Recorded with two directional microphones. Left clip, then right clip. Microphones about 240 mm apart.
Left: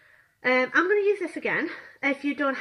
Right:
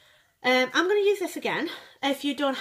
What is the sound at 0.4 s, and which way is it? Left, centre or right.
A woman's voice, right.